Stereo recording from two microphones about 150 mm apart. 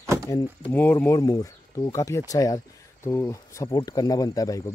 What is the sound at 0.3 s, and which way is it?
Speech, 15° left (ahead or behind).